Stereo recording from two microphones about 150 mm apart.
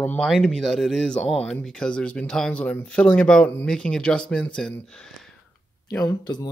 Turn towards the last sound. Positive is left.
turn(degrees=25)  # may be behind; listen again after turning